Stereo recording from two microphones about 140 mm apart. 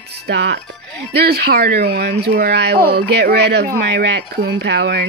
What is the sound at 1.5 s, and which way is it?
Speech, 90° right.